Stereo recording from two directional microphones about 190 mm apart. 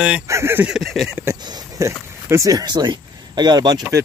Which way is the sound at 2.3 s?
15° right (ahead or behind).